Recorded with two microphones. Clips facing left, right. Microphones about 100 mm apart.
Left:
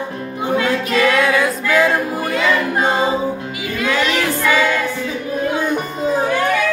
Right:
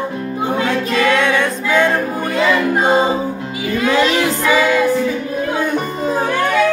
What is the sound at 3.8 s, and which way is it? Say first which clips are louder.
Choir: right 3 dB; 25° right (ahead or behind).